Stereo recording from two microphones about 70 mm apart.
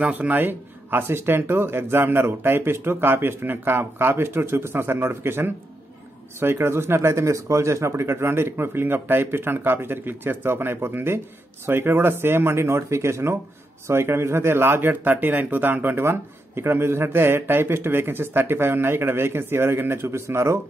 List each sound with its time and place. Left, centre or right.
0.0 s speech: right